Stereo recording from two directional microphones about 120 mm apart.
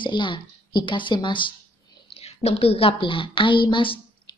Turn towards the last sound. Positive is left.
turn(degrees=45)  # may be behind; listen again after turning